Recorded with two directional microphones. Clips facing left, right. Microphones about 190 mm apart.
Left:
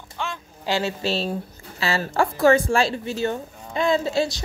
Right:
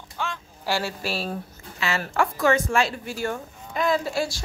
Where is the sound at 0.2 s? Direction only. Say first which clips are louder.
Left 1 dB; 5° right (ahead or behind).